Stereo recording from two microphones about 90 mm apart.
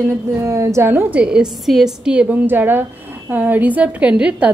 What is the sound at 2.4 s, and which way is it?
A woman's voice, 20° right (ahead or behind).